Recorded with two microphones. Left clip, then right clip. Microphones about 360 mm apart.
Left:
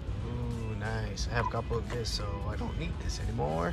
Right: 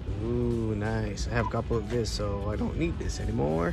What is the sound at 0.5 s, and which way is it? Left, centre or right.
Mantra, centre.